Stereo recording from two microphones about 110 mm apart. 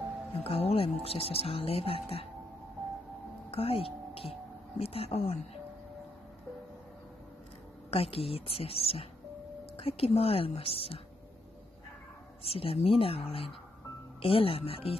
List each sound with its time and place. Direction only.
0.4 s speech: 65° left (ahead or behind)
3.4 s speech: 60° left (ahead or behind)
7.9 s speech: 60° left (ahead or behind)
12.4 s speech: 60° left (ahead or behind)